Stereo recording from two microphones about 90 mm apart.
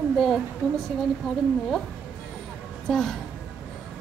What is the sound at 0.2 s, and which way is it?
Music, centre (ahead or behind).